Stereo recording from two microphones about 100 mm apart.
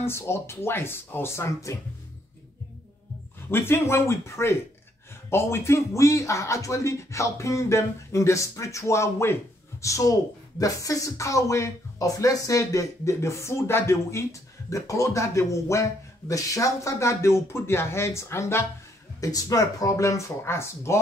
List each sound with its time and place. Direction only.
0.0 s speech: 25° left (ahead or behind)
3.4 s speech: 25° left (ahead or behind)
19.2 s speech: 35° left (ahead or behind)